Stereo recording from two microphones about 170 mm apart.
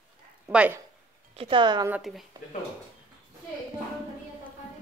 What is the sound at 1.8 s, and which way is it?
Speech, 5° right (ahead or behind).